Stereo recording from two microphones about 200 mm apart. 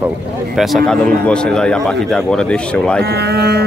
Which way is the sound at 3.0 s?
55° right (ahead or behind).